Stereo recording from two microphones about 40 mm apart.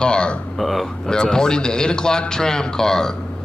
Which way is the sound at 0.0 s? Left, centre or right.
Left.